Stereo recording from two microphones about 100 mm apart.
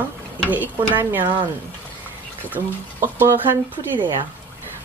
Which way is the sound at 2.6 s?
30° right (ahead or behind).